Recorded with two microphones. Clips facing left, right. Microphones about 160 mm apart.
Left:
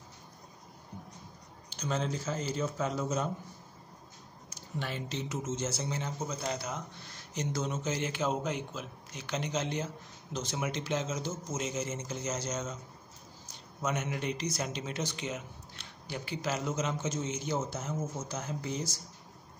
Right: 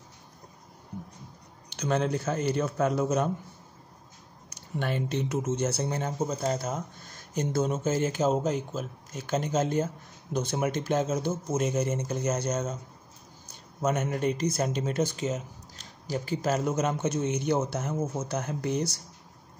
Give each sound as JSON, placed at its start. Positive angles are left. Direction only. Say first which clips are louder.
{"t": 1.8, "sound": "speech", "louder": "right 6 dB", "side_deg": -60}
{"t": 4.7, "sound": "speech", "louder": "right 7 dB", "side_deg": -55}
{"t": 13.7, "sound": "speech", "louder": "right 6 dB", "side_deg": -50}